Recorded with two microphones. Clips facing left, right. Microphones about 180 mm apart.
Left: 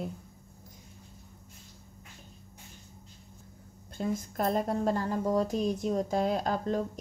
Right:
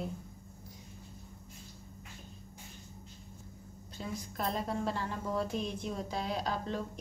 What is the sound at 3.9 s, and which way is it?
A woman's voice, 50° left (ahead or behind).